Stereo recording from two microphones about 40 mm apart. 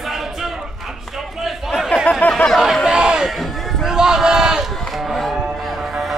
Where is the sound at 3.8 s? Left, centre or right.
Centre.